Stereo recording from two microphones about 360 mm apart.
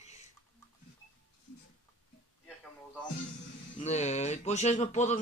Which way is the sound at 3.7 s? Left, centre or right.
Centre.